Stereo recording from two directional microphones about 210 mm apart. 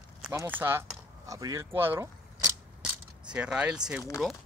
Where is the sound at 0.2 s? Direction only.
10° right (ahead or behind).